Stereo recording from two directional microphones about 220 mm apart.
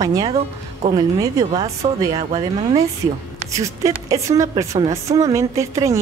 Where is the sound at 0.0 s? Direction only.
15° right (ahead or behind).